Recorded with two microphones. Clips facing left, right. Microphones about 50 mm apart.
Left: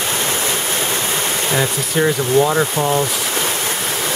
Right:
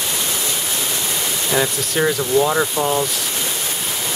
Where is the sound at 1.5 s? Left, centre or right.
Centre.